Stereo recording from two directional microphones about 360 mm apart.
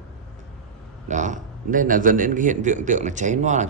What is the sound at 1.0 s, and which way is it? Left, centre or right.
A man's voice, centre.